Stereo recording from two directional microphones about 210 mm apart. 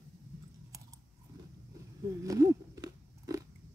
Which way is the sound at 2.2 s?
15° right (ahead or behind).